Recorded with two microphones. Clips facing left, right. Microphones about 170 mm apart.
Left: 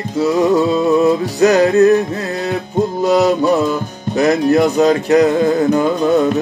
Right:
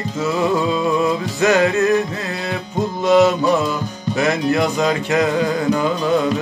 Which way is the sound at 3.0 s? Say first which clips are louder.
Even; 40° left (ahead or behind).